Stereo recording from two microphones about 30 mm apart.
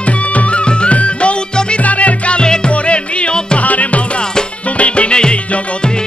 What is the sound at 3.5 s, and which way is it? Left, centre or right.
Music, left.